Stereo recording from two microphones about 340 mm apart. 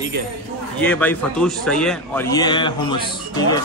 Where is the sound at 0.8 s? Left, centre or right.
Centre.